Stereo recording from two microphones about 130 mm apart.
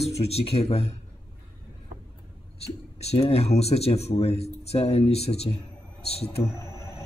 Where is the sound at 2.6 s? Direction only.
55° left (ahead or behind).